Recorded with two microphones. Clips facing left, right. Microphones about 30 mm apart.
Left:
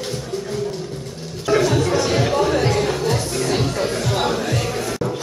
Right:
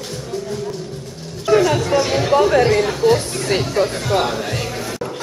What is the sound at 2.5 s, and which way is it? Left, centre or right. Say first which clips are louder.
Speech: right 4 dB; right.